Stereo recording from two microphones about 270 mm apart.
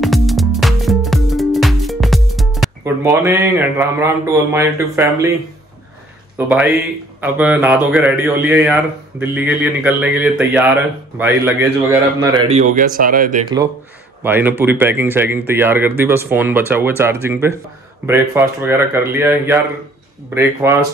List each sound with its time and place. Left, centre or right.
0.0 s music: centre
2.8 s a man's voice: centre
6.3 s a man's voice: centre
12.5 s speech: right
14.2 s a man's voice: centre